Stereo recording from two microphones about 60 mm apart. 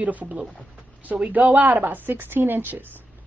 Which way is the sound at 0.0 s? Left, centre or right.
Right.